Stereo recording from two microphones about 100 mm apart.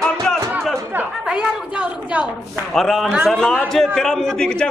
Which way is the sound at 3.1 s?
5° right (ahead or behind).